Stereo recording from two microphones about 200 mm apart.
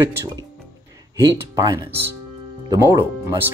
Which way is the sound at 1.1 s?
15° right (ahead or behind).